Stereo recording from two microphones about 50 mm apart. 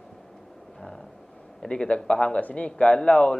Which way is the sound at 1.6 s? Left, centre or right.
Left.